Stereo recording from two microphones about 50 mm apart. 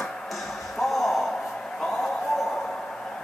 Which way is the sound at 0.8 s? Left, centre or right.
Centre.